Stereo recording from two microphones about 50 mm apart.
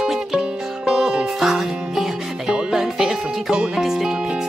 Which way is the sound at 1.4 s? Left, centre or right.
Centre.